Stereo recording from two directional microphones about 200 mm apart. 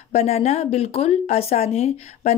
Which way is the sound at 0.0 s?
30° left (ahead or behind).